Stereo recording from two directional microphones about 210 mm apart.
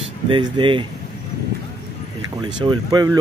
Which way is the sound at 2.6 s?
20° right (ahead or behind).